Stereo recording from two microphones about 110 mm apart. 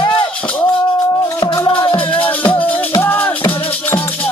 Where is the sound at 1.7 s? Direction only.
50° left (ahead or behind).